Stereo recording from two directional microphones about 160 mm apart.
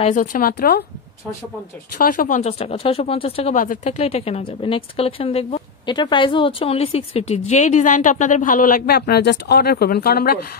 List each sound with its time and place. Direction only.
0.0 s speech: 55° left (ahead or behind)
2.0 s speech: 60° left (ahead or behind); by 3.5 s 40° left (ahead or behind)
3.5 s speech: 55° left (ahead or behind); by 10.4 s 70° left (ahead or behind)